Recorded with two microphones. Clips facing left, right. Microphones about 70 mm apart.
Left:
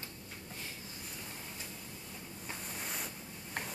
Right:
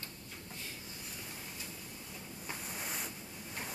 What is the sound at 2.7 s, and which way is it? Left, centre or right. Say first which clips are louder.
Ocean: even; centre.